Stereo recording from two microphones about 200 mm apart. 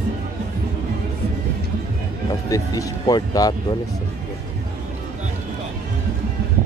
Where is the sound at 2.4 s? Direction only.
15° left (ahead or behind).